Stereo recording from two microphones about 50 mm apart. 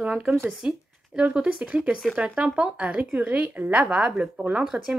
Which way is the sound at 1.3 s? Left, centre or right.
Right.